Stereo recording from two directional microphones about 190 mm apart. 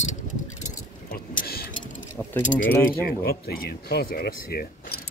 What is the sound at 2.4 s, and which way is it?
Speech, 40° left (ahead or behind).